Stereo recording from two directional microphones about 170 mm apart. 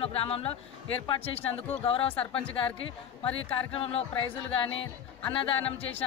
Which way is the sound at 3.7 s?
35° left (ahead or behind).